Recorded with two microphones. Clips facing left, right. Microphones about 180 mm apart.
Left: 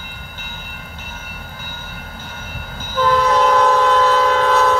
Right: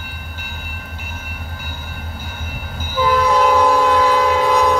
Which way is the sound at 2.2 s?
10° right (ahead or behind).